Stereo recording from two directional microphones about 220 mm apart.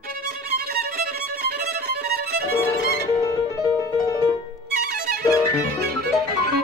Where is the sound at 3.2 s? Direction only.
15° left (ahead or behind).